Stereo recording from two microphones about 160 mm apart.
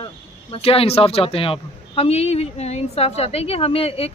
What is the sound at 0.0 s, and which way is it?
Speech, 35° left (ahead or behind).